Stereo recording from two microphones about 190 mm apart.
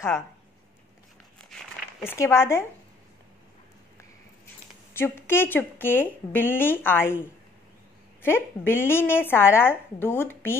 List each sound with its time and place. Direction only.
2.0 s a woman's voice: 15° left (ahead or behind)
4.9 s a woman's voice: 10° left (ahead or behind)
8.6 s a woman's voice: 10° left (ahead or behind)